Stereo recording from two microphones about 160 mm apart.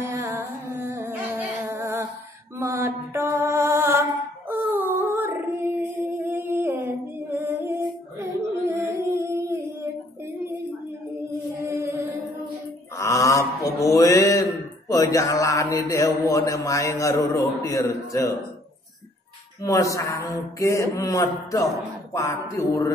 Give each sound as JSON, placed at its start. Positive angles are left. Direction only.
{"t": 0.0, "sound": "music", "side_deg": -20}
{"t": 2.6, "sound": "mantra", "side_deg": -15}
{"t": 4.5, "sound": "music", "side_deg": -10}
{"t": 8.6, "sound": "humming", "side_deg": -15}
{"t": 11.2, "sound": "music", "side_deg": -15}
{"t": 12.9, "sound": "a sound", "side_deg": 20}
{"t": 19.6, "sound": "a man's voice", "side_deg": 20}